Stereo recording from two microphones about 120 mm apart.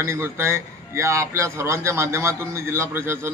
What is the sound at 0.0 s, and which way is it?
A man's voice, 20° right (ahead or behind).